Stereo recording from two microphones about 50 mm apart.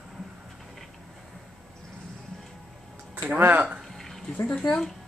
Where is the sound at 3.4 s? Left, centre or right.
Right.